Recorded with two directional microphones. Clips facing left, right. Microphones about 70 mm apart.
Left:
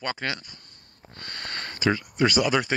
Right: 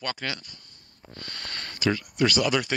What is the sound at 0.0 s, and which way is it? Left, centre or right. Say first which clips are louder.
Speech: left 2 dB; left.